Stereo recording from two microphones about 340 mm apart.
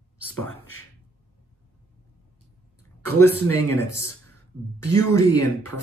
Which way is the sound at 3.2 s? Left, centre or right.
Left.